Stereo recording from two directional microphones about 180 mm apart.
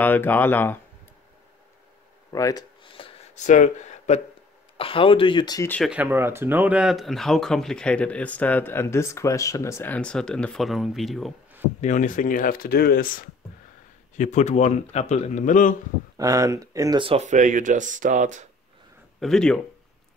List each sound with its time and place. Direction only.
0.0 s speech: 10° left (ahead or behind)
2.3 s a sound: 20° left (ahead or behind)
3.4 s speech: 45° left (ahead or behind)
4.7 s speech: 30° left (ahead or behind)
5.9 s speech: 10° right (ahead or behind)
11.8 s speech: 45° left (ahead or behind)
16.2 s speech: 20° right (ahead or behind)
17.0 s speech: 35° right (ahead or behind)
19.1 s speech: centre (ahead or behind)